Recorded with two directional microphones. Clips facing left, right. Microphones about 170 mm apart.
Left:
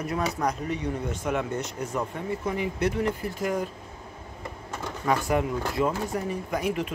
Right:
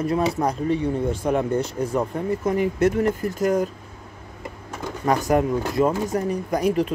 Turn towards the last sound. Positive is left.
turn(degrees=-40)  # may be behind; listen again after turning